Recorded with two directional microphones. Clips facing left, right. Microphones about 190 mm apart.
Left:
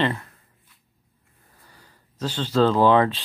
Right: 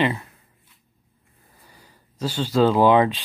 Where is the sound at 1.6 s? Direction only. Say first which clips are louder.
Right 2 dB; 10° right (ahead or behind).